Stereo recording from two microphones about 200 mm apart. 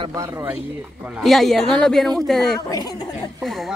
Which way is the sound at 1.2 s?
Centre (ahead or behind).